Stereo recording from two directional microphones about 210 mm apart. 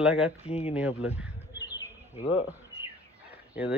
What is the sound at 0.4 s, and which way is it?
Speech, 30° left (ahead or behind).